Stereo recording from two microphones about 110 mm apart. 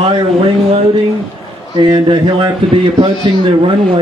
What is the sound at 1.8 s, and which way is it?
Speech, 45° right (ahead or behind).